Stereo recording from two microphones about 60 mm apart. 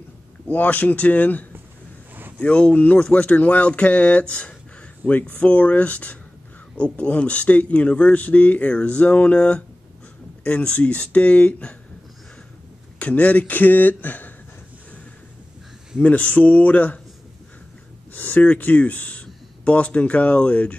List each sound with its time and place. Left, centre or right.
0.5 s speech: left
13.0 s speech: left
16.0 s speech: left
18.1 s speech: left